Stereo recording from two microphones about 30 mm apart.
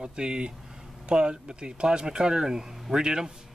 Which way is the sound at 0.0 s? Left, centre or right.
Right.